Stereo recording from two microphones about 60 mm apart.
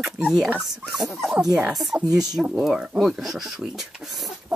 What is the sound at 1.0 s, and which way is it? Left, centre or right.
Speech, centre.